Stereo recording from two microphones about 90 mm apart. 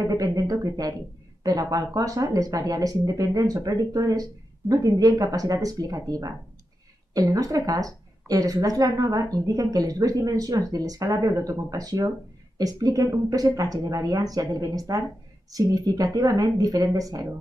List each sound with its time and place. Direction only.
0.0 s a woman's voice: 45° right (ahead or behind)